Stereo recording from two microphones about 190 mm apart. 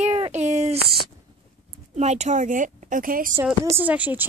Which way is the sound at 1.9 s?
35° right (ahead or behind).